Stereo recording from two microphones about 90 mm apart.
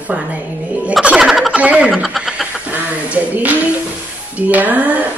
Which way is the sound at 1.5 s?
10° right (ahead or behind).